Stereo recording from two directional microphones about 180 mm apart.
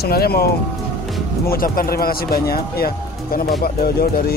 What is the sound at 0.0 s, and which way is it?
Speech, 60° left (ahead or behind).